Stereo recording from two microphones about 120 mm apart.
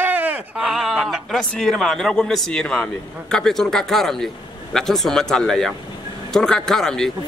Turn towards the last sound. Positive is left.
turn(degrees=5)  # may be behind; listen again after turning